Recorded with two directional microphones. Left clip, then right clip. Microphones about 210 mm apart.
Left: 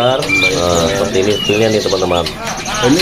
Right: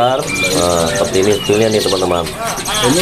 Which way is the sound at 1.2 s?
5° right (ahead or behind).